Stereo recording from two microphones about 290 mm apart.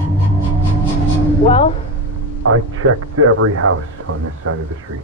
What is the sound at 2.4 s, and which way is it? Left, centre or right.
Speech, right.